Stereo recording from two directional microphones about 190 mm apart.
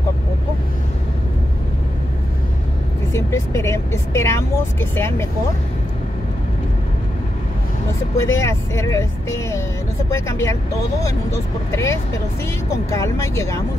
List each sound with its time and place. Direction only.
3.1 s speech: 15° left (ahead or behind)
8.2 s speech: 15° left (ahead or behind)